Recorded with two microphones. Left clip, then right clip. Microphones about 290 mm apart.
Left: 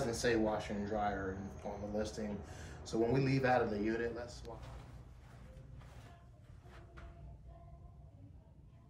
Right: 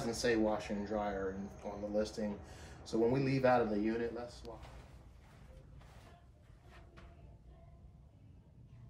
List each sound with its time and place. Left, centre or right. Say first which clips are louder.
0.0 s speech: even; right